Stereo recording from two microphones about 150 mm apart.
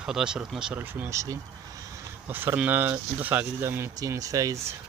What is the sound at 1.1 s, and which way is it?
Speech, 20° right (ahead or behind).